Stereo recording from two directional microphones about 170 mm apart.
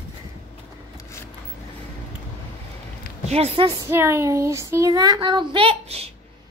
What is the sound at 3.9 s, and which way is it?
Child singing, 15° right (ahead or behind).